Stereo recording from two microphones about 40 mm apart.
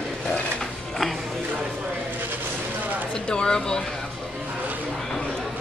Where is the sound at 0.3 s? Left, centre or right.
Centre.